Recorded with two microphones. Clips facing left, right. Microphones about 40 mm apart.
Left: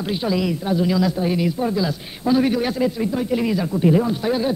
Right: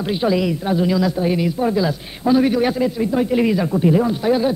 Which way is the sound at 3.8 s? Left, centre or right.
Centre.